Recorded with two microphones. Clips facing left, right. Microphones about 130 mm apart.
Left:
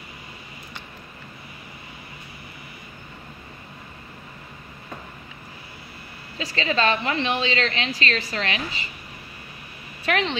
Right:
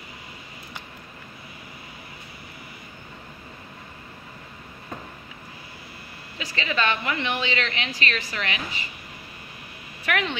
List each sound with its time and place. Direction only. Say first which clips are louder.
6.3 s a woman's voice: left 3 dB; 30° left (ahead or behind)
10.0 s speech: left 3 dB; 25° left (ahead or behind)